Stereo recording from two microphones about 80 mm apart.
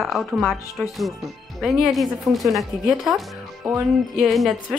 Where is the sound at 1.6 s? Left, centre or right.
Centre.